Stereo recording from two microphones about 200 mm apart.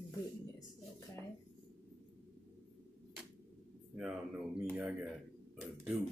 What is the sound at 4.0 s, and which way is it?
Speech, 5° right (ahead or behind).